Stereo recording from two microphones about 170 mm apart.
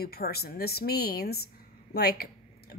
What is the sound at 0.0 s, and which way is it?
Speech, 65° left (ahead or behind).